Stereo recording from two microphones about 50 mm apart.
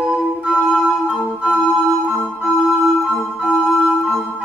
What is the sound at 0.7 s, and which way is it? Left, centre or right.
Organ, centre.